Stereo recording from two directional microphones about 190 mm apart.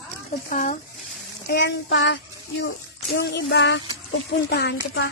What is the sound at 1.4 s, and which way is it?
Speech, 65° left (ahead or behind).